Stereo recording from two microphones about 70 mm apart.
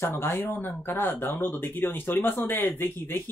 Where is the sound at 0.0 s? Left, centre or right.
Left.